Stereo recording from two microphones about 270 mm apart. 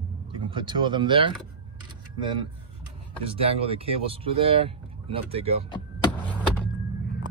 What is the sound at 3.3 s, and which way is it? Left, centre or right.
Speech, right.